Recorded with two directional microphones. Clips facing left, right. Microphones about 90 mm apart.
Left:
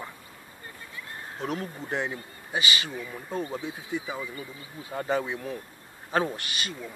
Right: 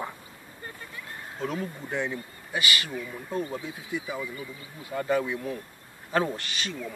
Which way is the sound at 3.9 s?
25° left (ahead or behind).